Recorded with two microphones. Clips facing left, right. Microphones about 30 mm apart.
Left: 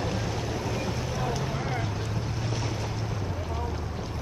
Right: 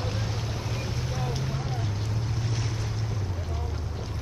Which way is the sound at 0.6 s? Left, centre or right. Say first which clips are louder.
Left 3 dB; centre.